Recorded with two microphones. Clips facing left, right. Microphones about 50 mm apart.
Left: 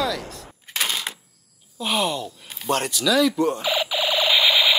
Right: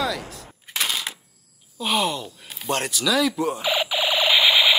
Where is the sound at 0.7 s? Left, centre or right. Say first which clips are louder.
Even; centre.